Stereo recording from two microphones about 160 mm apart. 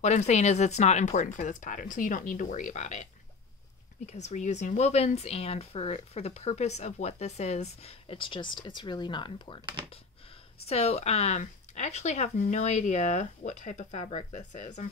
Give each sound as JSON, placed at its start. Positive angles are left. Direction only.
{"t": 0.0, "sound": "speech", "side_deg": 45}
{"t": 10.7, "sound": "speech", "side_deg": 40}